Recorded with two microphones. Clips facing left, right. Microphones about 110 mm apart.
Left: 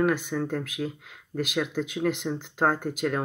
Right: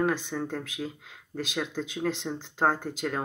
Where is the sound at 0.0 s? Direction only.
30° right (ahead or behind).